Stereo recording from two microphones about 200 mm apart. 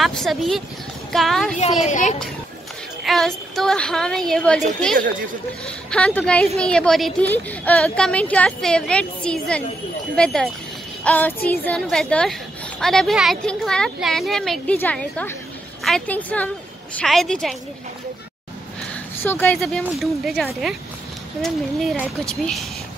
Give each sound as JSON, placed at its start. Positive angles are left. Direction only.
{"t": 0.0, "sound": "a woman's voice", "side_deg": 0}
{"t": 1.8, "sound": "a child's voice", "side_deg": 35}
{"t": 3.0, "sound": "a woman's voice", "side_deg": 0}
{"t": 19.2, "sound": "a woman's voice", "side_deg": 10}